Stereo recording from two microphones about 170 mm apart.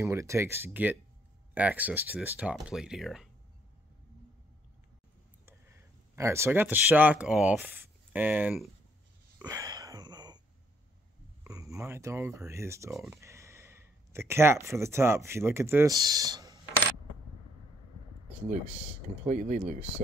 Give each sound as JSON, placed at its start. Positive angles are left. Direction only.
{"t": 0.0, "sound": "speech", "side_deg": -15}
{"t": 6.1, "sound": "speech", "side_deg": -15}
{"t": 9.4, "sound": "a sound", "side_deg": -20}
{"t": 11.4, "sound": "speech", "side_deg": -20}
{"t": 12.9, "sound": "speech", "side_deg": 0}
{"t": 13.2, "sound": "speech", "side_deg": -15}
{"t": 19.2, "sound": "speech", "side_deg": -45}